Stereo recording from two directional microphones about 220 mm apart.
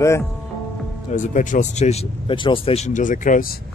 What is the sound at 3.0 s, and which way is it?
Speech, 35° left (ahead or behind).